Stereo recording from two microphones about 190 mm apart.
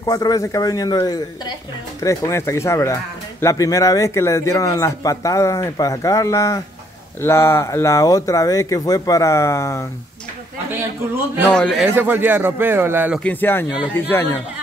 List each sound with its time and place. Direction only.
0.0 s a man's voice: 20° left (ahead or behind)
11.5 s a man's voice: centre (ahead or behind)
11.9 s a man's voice: 10° right (ahead or behind)
13.2 s speech: 10° left (ahead or behind)